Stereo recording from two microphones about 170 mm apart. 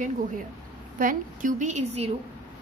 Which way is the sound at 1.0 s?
50° right (ahead or behind).